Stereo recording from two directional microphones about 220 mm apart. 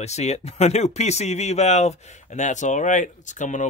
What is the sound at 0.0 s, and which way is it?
Speech, 30° left (ahead or behind).